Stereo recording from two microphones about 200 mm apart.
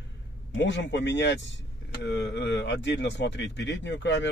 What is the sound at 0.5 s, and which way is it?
Speech, 65° left (ahead or behind).